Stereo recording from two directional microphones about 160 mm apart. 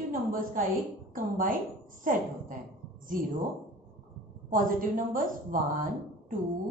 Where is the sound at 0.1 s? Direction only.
60° right (ahead or behind).